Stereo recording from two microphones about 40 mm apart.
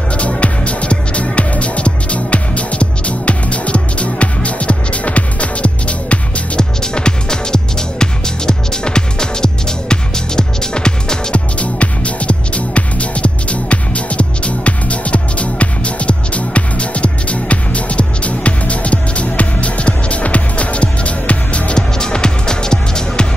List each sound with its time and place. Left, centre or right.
0.4 s music: left
6.8 s music: centre
11.3 s music: left
21.7 s music: centre